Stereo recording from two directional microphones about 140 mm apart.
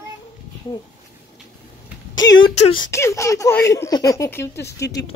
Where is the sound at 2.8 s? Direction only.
20° left (ahead or behind).